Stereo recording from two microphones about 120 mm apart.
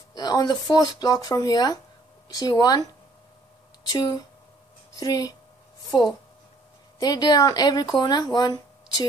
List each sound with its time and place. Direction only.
0.1 s speech: 30° left (ahead or behind)